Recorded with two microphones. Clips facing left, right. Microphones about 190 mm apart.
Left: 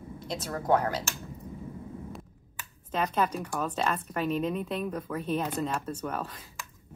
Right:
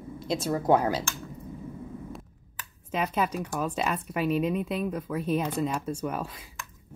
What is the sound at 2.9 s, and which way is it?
Speech, 5° right (ahead or behind).